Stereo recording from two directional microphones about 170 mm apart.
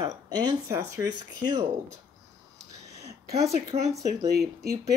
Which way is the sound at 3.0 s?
20° right (ahead or behind).